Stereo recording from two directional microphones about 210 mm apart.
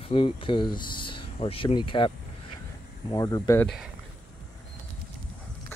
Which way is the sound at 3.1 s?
15° left (ahead or behind).